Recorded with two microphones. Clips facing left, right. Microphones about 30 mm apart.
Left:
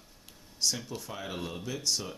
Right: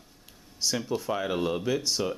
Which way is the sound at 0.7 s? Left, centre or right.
Right.